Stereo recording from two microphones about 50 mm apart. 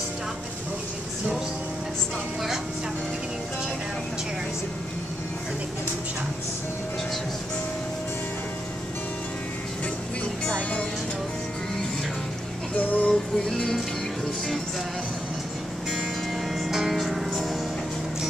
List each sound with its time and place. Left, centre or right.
10.4 s music: left
12.7 s child singing: left
13.1 s music: centre
16.6 s music: centre